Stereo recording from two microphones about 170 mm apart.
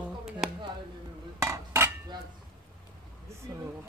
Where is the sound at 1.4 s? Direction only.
15° right (ahead or behind).